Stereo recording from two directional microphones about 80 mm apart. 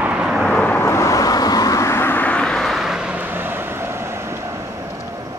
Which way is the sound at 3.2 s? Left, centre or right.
Right.